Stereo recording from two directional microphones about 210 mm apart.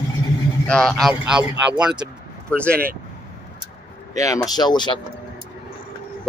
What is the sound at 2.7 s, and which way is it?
Speech, 45° right (ahead or behind).